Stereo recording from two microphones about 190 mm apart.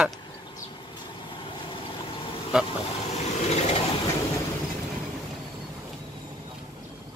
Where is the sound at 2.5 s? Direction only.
5° right (ahead or behind).